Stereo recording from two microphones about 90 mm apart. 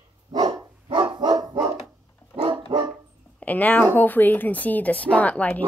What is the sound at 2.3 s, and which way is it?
Dog, 65° right (ahead or behind).